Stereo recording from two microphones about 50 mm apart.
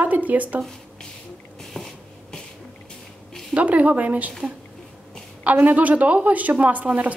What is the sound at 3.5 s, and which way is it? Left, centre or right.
Speech, right.